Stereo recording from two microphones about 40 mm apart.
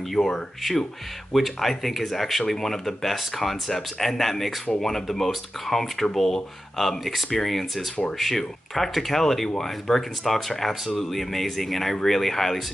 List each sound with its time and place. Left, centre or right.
0.1 s speech: centre